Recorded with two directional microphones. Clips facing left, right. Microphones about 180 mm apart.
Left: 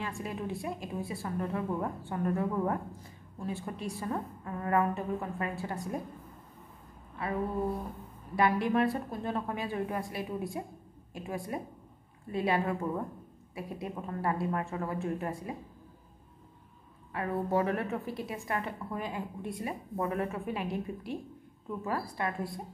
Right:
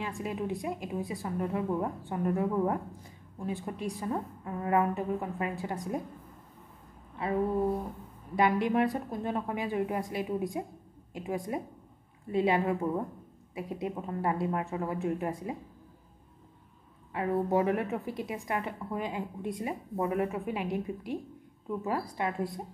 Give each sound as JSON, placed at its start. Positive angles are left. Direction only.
{"t": 0.0, "sound": "a woman's voice", "side_deg": -20}
{"t": 7.2, "sound": "a sound", "side_deg": -20}
{"t": 8.4, "sound": "a woman's voice", "side_deg": -20}
{"t": 17.1, "sound": "a woman's voice", "side_deg": -20}